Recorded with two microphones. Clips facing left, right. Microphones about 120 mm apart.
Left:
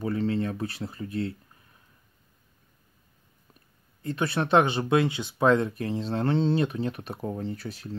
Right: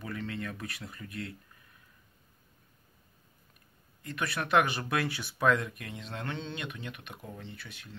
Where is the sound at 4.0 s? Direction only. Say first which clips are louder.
Left 7 dB; 30° left (ahead or behind).